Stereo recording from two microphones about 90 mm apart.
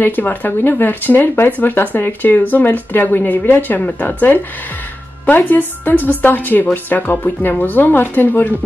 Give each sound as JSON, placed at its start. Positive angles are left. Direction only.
{"t": 0.0, "sound": "speech", "side_deg": 20}